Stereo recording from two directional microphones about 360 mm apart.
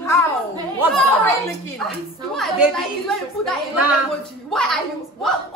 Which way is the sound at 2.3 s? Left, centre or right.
Centre.